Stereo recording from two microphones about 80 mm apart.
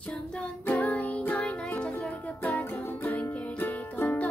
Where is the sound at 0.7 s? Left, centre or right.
Centre.